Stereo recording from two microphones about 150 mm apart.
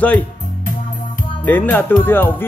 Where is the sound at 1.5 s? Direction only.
10° left (ahead or behind).